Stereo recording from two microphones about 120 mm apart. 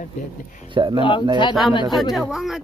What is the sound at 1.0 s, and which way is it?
Speech, 45° left (ahead or behind).